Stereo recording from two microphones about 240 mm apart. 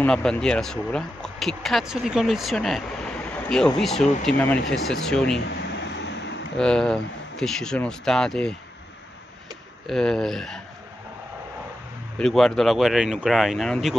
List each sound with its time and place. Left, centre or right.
0.0 s speech: centre
5.5 s vehicle: left
6.5 s speech: centre
9.8 s speech: centre
12.2 s speech: centre